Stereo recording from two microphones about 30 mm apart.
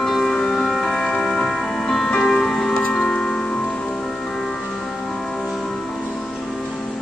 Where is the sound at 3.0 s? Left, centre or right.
Left.